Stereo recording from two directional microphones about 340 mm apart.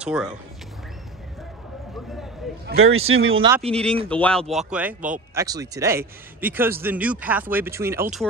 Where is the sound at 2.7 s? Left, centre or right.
Right.